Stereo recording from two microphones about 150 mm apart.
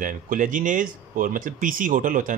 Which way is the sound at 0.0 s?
60° right (ahead or behind).